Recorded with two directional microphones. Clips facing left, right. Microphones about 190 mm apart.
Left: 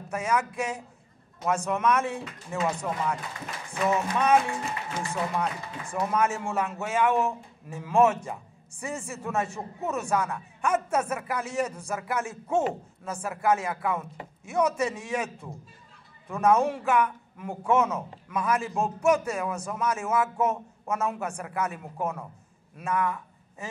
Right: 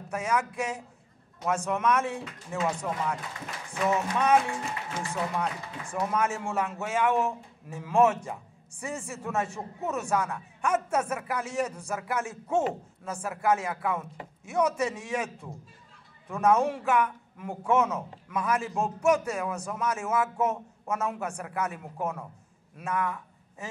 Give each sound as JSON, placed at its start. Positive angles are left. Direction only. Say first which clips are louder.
{"t": 0.1, "sound": "a man's voice", "louder": "left 1 dB", "side_deg": 15}